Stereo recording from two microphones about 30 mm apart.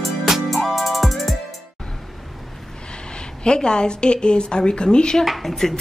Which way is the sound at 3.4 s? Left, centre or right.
Left.